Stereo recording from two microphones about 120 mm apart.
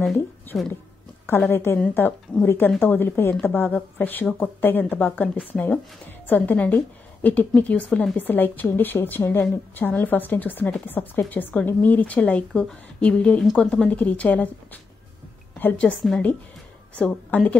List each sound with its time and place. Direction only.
0.5 s speech: 5° left (ahead or behind)
1.5 s a woman's voice: 20° left (ahead or behind)